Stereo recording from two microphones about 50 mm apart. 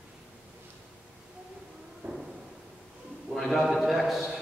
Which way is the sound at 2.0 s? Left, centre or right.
Right.